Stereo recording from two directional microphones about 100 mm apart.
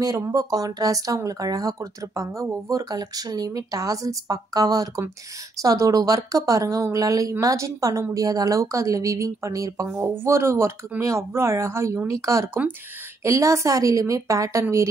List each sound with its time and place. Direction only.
0.2 s speech: 35° right (ahead or behind)